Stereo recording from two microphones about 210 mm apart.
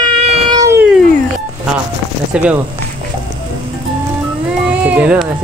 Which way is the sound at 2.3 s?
5° right (ahead or behind).